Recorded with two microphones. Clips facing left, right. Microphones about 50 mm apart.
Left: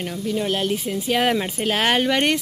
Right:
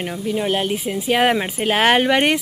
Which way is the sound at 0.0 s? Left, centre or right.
Centre.